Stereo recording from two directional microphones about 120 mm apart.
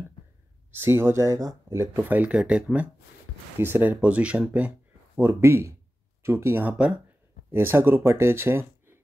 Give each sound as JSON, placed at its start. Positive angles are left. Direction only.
{"t": 0.7, "sound": "speech", "side_deg": -20}